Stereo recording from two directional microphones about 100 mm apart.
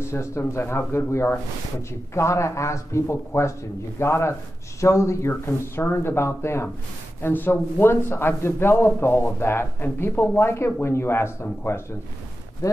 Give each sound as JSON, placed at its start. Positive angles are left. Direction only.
{"t": 0.0, "sound": "speech", "side_deg": 25}
{"t": 12.6, "sound": "speech", "side_deg": 30}